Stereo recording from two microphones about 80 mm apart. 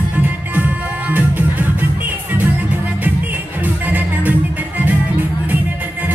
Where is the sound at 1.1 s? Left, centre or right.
Centre.